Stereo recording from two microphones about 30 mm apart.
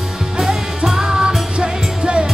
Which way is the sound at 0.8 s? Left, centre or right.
Centre.